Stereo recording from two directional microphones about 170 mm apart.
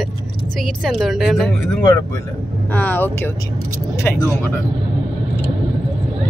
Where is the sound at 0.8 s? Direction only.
Centre (ahead or behind).